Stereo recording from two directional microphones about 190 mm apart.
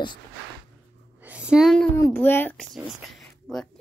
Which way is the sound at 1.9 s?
15° left (ahead or behind).